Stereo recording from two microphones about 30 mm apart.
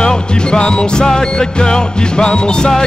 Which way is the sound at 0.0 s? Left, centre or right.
Left.